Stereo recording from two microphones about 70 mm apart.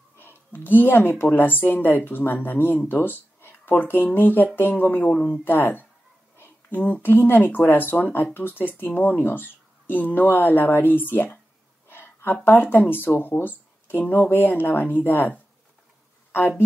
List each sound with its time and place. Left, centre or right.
0.2 s speech: left
11.9 s a sound: left
12.4 s a woman's voice: left